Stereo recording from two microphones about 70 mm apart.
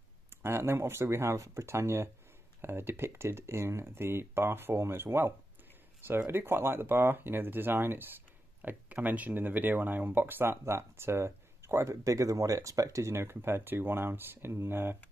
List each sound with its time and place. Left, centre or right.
0.4 s speech: right
8.6 s speech: right